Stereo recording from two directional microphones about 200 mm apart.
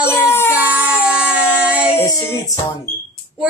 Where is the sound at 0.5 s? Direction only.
10° right (ahead or behind).